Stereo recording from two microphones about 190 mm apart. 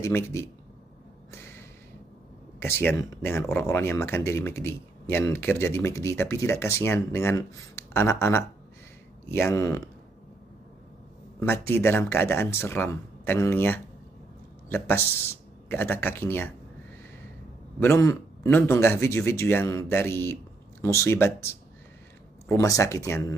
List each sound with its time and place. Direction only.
0.0 s speech: 15° left (ahead or behind)
2.6 s speech: 10° left (ahead or behind)
11.3 s speech: 10° left (ahead or behind)
17.7 s speech: 15° left (ahead or behind)